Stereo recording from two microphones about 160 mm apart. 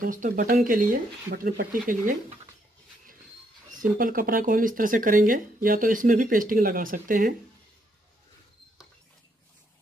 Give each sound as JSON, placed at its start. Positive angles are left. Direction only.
{"t": 0.0, "sound": "speech", "side_deg": -60}
{"t": 3.8, "sound": "speech", "side_deg": -60}